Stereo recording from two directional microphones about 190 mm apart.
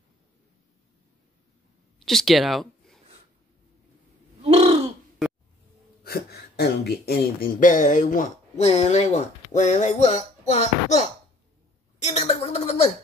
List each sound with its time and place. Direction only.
2.0 s speech: centre (ahead or behind)
4.4 s gasp: 35° right (ahead or behind)
6.0 s a woman's voice: 55° left (ahead or behind); by 12.9 s 35° left (ahead or behind)